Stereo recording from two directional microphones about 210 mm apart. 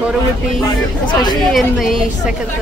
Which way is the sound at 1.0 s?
20° left (ahead or behind).